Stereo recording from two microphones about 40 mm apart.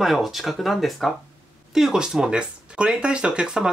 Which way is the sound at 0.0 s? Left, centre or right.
Centre.